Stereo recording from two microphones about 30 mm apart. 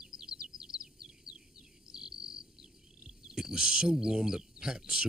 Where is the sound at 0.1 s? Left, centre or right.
Right.